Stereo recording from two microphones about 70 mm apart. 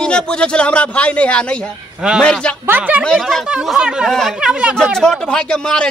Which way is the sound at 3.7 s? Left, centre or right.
Centre.